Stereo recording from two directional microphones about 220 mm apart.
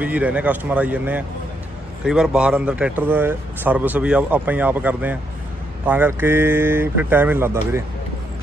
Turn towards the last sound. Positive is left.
turn(degrees=-10)  # may be behind; listen again after turning